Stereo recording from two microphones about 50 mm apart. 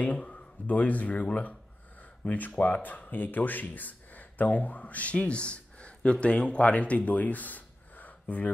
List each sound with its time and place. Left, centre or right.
0.0 s speech: left